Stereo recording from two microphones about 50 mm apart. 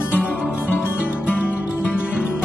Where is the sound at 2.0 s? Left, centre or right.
Right.